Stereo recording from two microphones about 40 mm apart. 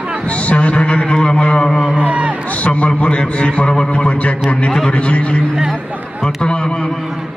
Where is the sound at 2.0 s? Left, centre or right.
Right.